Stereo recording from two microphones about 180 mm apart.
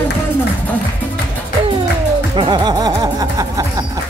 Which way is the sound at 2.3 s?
25° right (ahead or behind).